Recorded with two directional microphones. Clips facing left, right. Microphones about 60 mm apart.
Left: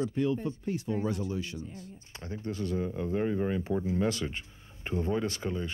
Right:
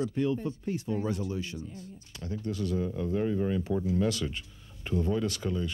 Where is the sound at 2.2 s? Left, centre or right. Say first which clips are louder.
Right 2 dB; left.